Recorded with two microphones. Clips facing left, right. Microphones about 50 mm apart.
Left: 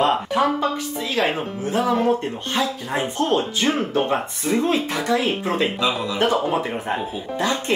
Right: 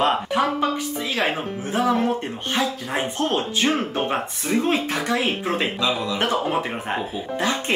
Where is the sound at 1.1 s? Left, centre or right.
Centre.